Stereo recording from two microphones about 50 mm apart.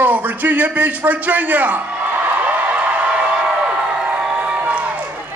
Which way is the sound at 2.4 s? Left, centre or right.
Right.